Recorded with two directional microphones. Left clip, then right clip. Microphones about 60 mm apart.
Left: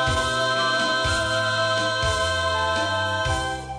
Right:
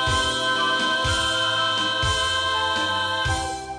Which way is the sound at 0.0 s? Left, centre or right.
Right.